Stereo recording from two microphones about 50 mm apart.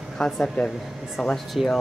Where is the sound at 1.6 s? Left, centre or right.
Centre.